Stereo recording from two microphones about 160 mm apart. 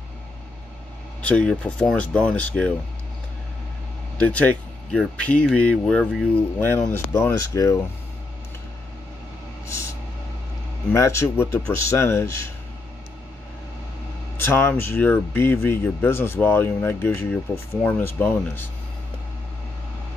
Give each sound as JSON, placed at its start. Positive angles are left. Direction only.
{"t": 1.2, "sound": "speech", "side_deg": 5}
{"t": 4.2, "sound": "speech", "side_deg": 10}
{"t": 9.7, "sound": "vehicle", "side_deg": 15}
{"t": 10.9, "sound": "speech", "side_deg": 15}
{"t": 14.3, "sound": "speech", "side_deg": 15}